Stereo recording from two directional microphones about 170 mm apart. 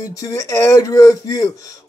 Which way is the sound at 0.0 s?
20° left (ahead or behind).